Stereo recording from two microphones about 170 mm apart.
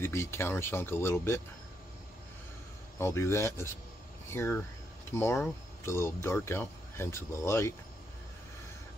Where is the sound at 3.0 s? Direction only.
15° left (ahead or behind).